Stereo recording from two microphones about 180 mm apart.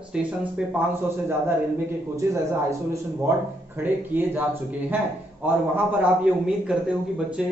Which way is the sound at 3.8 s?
10° right (ahead or behind).